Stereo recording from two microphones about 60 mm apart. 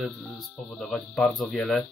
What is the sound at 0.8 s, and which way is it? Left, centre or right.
Speech, centre.